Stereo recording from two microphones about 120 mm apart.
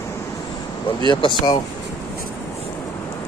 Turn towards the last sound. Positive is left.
turn(degrees=40)  # may be behind; listen again after turning